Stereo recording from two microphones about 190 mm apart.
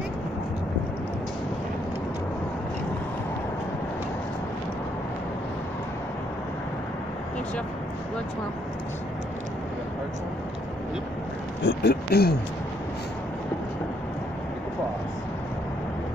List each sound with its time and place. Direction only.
11.6 s speech: 60° left (ahead or behind)